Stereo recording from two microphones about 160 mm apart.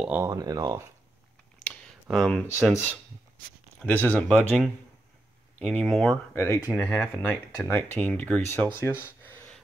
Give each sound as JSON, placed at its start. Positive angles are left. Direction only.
{"t": 0.0, "sound": "speech", "side_deg": -10}
{"t": 0.3, "sound": "speech", "side_deg": -25}
{"t": 1.6, "sound": "a sound", "side_deg": 5}
{"t": 3.8, "sound": "speech", "side_deg": 10}
{"t": 6.3, "sound": "speech", "side_deg": 15}
{"t": 9.0, "sound": "a sound", "side_deg": 10}